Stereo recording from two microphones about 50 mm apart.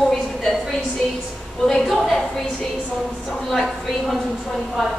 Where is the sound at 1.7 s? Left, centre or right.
Centre.